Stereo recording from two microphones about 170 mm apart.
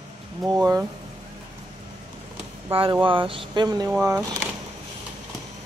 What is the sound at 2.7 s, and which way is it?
Speech, 30° right (ahead or behind).